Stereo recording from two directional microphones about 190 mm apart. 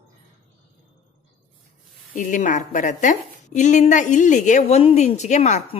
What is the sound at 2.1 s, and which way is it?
A woman's voice, 40° left (ahead or behind).